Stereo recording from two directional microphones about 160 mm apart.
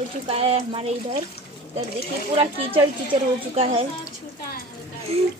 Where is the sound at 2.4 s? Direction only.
35° right (ahead or behind).